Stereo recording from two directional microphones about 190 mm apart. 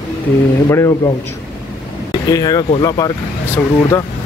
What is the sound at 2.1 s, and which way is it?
Speech, 20° left (ahead or behind).